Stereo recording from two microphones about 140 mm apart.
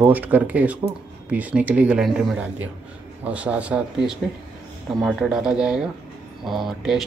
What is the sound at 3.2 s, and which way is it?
Speech, 10° right (ahead or behind).